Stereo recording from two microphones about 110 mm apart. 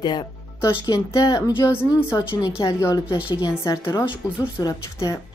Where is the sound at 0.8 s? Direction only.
35° left (ahead or behind).